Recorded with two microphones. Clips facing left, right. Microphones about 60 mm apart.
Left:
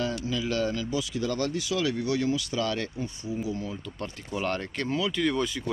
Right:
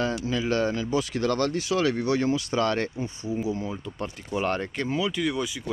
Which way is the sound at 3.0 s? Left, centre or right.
Right.